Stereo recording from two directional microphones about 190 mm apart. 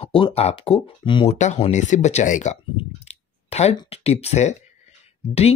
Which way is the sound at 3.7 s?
30° left (ahead or behind).